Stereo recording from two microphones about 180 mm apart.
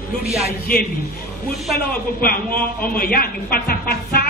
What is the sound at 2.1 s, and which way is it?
A man's voice, 55° left (ahead or behind).